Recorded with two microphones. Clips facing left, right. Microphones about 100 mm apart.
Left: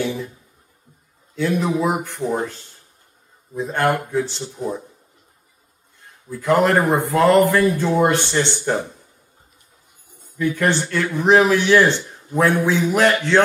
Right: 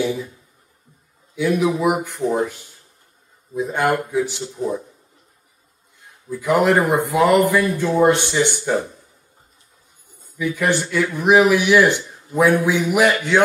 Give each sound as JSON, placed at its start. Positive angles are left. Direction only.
{"t": 1.3, "sound": "speech", "side_deg": -10}
{"t": 6.3, "sound": "speech", "side_deg": -10}
{"t": 7.6, "sound": "speech", "side_deg": 20}
{"t": 8.1, "sound": "speech", "side_deg": -15}
{"t": 10.3, "sound": "speech", "side_deg": -10}